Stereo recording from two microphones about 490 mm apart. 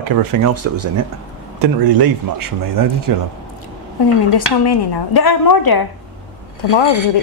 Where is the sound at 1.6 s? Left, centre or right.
Right.